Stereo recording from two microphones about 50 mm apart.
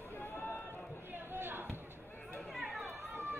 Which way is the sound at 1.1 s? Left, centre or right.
Right.